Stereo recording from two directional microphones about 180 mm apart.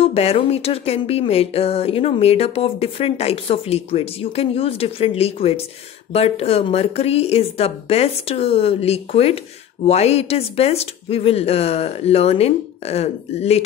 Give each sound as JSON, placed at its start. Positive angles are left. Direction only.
{"t": 0.0, "sound": "speech", "side_deg": 35}